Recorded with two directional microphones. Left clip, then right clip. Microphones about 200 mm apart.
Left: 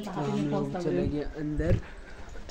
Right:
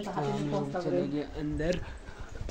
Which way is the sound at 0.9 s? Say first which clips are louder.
Left 1 dB; 10° left (ahead or behind).